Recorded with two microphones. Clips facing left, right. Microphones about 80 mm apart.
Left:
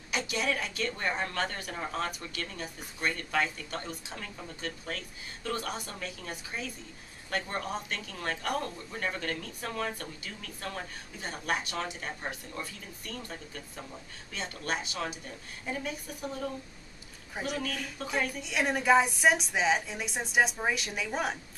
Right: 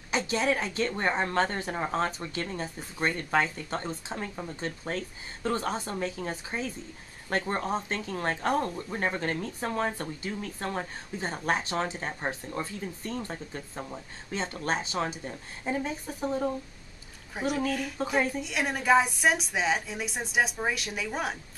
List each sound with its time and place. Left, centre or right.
0.1 s speech: right
17.4 s a woman's voice: centre
18.0 s speech: right
18.4 s a woman's voice: centre